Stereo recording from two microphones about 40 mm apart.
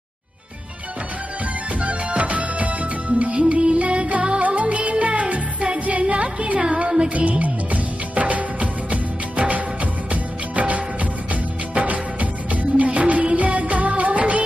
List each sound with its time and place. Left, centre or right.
1.8 s music: right
7.2 s music: right